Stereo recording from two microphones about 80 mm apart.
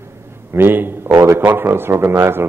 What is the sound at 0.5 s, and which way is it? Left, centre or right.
A man's voice, right.